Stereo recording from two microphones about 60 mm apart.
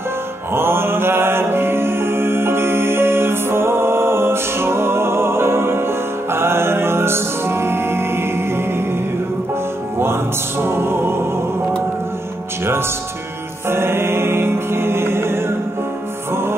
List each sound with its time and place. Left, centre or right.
0.6 s music: right
10.6 s music: right
13.7 s music: right